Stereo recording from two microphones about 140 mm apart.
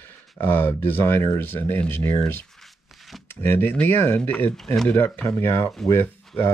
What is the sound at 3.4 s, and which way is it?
Speech, 15° left (ahead or behind).